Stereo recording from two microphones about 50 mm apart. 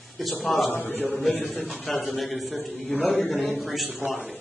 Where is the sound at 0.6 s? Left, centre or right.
Left.